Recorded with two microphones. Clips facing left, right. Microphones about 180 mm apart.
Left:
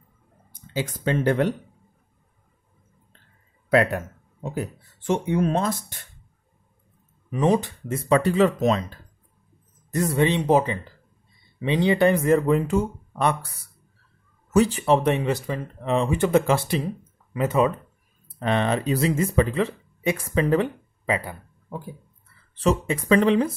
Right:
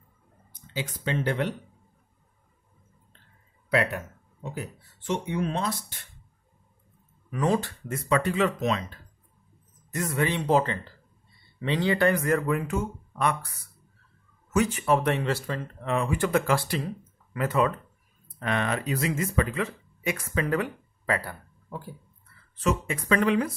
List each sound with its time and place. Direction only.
0.5 s speech: 50° left (ahead or behind)
3.7 s speech: 45° left (ahead or behind)
7.2 s speech: 20° left (ahead or behind)
8.0 s speech: 30° left (ahead or behind)
14.5 s speech: 35° left (ahead or behind)
15.0 s speech: 20° left (ahead or behind)
22.6 s speech: 30° left (ahead or behind)